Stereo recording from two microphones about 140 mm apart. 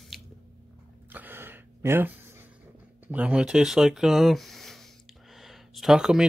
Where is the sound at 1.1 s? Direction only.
15° right (ahead or behind).